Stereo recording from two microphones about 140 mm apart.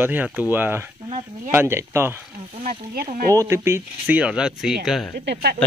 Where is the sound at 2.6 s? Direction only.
80° right.